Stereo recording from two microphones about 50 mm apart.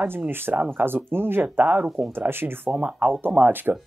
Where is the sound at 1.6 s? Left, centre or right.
Right.